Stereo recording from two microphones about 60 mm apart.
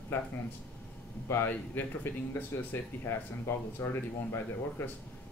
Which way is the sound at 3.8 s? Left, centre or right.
Left.